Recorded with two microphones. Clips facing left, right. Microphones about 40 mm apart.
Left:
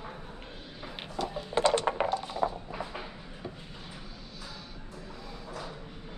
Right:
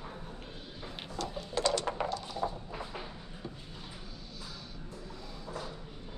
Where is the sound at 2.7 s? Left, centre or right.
Centre.